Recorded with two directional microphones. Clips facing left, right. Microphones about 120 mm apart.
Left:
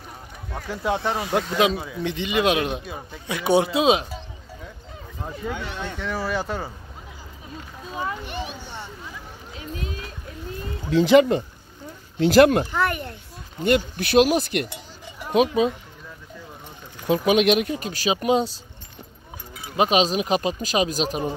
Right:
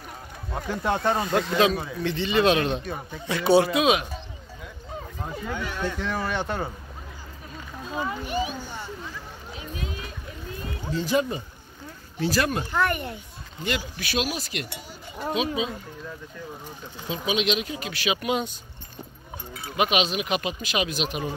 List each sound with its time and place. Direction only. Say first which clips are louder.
0.7 s speech: even; 5° left (ahead or behind)
1.6 s a man's voice: left 1 dB; 15° left (ahead or behind)
5.5 s speech: right 3 dB; 20° left (ahead or behind)
5.9 s speech: left 1 dB; centre (ahead or behind)
8.3 s a child's voice: right 4 dB; 5° right (ahead or behind)
10.9 s speech: left 9 dB; 90° left
12.3 s speech: left 11 dB; 60° left (ahead or behind)
12.7 s speech: left 1 dB; centre (ahead or behind)
13.7 s speech: left 9 dB; 55° left (ahead or behind)
17.1 s speech: left 8 dB; 55° left (ahead or behind)
17.8 s speech: left 5 dB; 40° left (ahead or behind)
19.8 s speech: left 4 dB; 35° left (ahead or behind)